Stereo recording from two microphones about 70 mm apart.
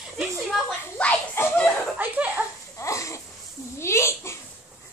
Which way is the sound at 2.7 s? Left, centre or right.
Left.